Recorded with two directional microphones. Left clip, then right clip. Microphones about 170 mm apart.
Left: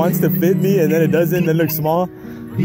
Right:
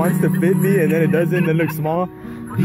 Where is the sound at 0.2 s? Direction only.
30° left (ahead or behind).